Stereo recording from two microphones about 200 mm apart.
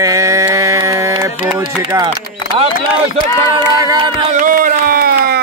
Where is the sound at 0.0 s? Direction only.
15° right (ahead or behind).